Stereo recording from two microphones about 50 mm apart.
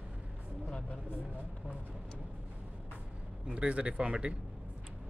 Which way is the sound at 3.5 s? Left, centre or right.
Right.